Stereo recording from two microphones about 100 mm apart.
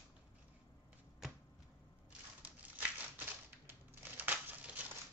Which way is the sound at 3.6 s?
20° right (ahead or behind).